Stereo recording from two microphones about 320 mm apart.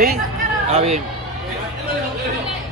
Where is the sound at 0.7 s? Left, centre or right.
Centre.